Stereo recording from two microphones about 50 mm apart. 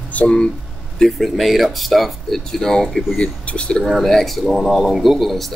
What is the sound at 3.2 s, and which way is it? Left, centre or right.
Speech, centre.